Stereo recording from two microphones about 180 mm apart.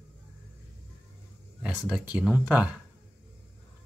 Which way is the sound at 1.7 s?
Centre (ahead or behind).